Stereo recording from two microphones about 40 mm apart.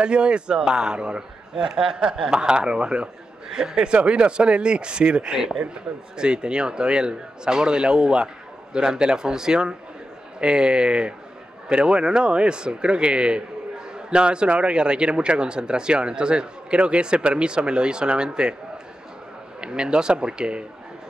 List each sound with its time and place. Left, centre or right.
0.0 s speech: right
5.3 s speech: centre
19.6 s speech: right